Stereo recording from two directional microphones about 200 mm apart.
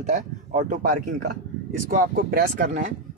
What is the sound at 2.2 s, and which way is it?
Speech, 45° right (ahead or behind).